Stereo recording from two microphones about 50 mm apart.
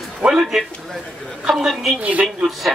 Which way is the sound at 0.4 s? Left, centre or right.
Centre.